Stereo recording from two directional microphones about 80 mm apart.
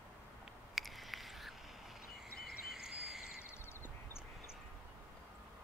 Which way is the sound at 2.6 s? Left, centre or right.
Centre.